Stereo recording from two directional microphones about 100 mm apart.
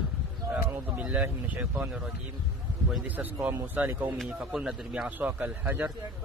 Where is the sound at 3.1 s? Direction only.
15° right (ahead or behind).